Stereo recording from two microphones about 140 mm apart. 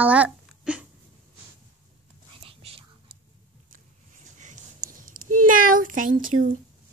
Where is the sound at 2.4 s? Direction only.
40° right (ahead or behind).